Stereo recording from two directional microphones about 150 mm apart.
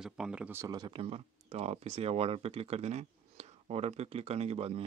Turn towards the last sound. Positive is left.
turn(degrees=-45)  # may be behind; listen again after turning